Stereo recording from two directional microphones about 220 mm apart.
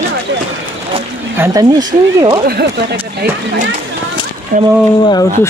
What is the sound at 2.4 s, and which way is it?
Speech, 45° right (ahead or behind).